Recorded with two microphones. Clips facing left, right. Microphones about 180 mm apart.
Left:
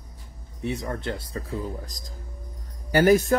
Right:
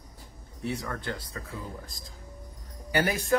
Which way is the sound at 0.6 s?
20° left (ahead or behind).